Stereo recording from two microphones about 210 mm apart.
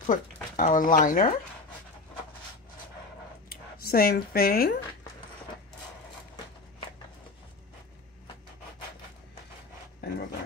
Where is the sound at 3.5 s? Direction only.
45° left (ahead or behind).